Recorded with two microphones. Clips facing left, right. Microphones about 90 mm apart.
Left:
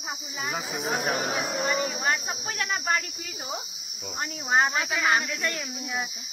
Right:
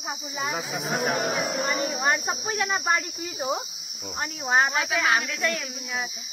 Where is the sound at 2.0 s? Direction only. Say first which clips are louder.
Right 3 dB; 20° right (ahead or behind).